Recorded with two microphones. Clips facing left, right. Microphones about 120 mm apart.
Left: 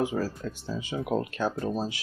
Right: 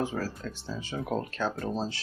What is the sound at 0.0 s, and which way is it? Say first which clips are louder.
Speech: left 3 dB; 15° left (ahead or behind).